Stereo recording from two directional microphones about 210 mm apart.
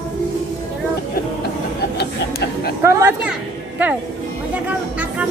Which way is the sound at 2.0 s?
50° left (ahead or behind).